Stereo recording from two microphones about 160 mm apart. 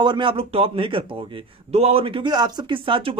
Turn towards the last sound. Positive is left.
turn(degrees=-35)  # may be behind; listen again after turning